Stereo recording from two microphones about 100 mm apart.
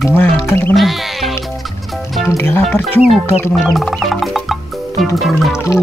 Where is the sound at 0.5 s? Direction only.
20° left (ahead or behind).